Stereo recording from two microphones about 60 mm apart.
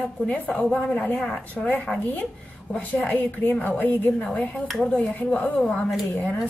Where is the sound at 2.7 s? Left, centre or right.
Left.